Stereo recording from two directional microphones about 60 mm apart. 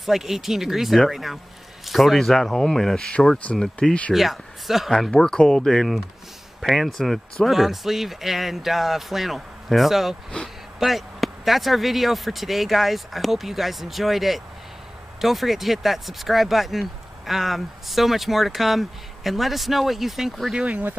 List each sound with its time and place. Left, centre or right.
0.0 s speech: centre
3.1 s speech: centre
4.1 s speech: centre
5.1 s speech: centre
20.5 s speech: right